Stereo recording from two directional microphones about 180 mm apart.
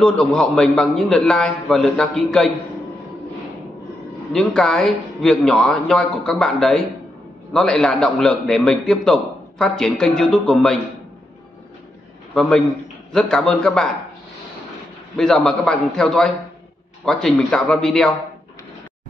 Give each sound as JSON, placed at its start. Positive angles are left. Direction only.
{"t": 0.0, "sound": "a man's voice", "side_deg": 5}
{"t": 4.3, "sound": "a man's voice", "side_deg": 5}
{"t": 12.4, "sound": "a man's voice", "side_deg": 0}
{"t": 15.1, "sound": "a man's voice", "side_deg": 5}